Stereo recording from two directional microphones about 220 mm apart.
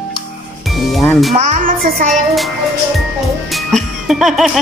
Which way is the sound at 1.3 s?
35° right (ahead or behind).